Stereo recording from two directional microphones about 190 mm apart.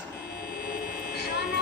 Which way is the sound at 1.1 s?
60° left (ahead or behind).